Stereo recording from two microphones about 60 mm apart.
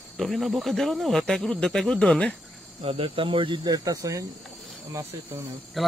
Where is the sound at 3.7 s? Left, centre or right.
Right.